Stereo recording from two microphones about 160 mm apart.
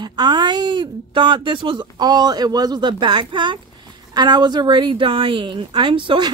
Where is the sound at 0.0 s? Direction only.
25° right (ahead or behind).